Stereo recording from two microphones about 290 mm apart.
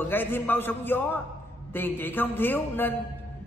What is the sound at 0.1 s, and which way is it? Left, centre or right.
A man's voice, centre.